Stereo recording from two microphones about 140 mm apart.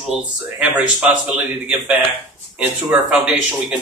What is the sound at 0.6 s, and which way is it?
Speech, 5° right (ahead or behind).